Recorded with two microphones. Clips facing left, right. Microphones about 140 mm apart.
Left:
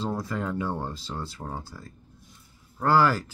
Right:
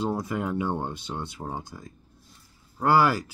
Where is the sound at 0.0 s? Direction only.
20° right (ahead or behind).